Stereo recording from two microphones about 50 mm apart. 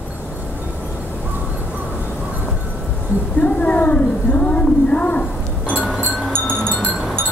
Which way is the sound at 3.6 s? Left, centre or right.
Left.